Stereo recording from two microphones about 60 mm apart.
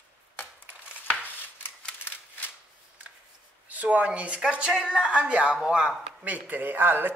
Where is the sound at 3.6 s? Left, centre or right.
Right.